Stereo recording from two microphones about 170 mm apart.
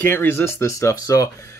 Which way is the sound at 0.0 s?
15° left (ahead or behind).